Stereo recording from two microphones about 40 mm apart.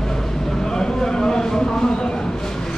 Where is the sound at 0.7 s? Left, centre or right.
Centre.